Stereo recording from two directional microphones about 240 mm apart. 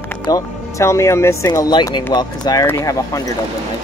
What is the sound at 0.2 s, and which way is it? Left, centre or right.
Speech, centre.